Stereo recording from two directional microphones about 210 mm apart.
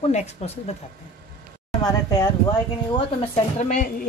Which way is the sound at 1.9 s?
15° left (ahead or behind).